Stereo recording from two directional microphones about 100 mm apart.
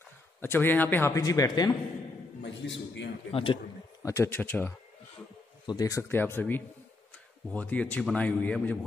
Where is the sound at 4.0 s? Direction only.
30° left (ahead or behind).